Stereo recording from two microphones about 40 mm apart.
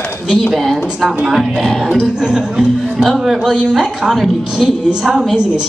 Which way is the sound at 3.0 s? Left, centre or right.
Centre.